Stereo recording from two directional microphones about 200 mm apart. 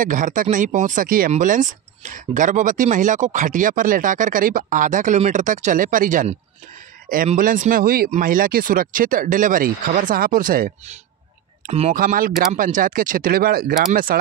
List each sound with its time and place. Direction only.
0.0 s speech: 40° right (ahead or behind)
11.6 s speech: 30° right (ahead or behind)
11.9 s speech: 45° right (ahead or behind)